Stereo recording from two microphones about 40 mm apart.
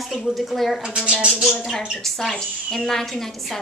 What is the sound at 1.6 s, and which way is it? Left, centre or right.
A woman's voice, centre.